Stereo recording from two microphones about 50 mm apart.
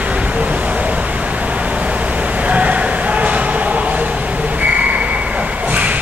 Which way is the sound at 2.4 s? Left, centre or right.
Right.